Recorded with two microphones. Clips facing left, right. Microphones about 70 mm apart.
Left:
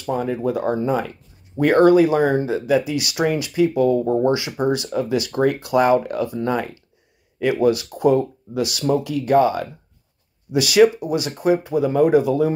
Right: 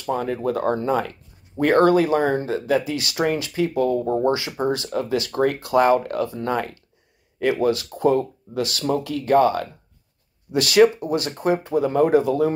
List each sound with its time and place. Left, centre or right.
0.0 s speech: centre